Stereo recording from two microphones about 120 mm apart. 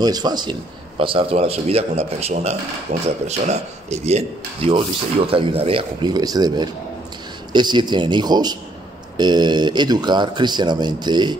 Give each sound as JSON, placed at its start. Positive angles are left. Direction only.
{"t": 0.0, "sound": "speech", "side_deg": -35}
{"t": 6.1, "sound": "a man's voice", "side_deg": -35}